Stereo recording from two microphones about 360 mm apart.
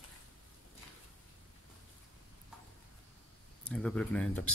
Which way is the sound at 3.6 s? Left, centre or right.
Centre.